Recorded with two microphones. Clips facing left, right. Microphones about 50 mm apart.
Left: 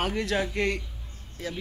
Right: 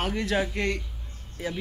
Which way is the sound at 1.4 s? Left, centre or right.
Centre.